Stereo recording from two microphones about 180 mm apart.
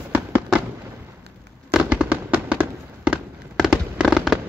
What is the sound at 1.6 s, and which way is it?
Fireworks, 5° right (ahead or behind).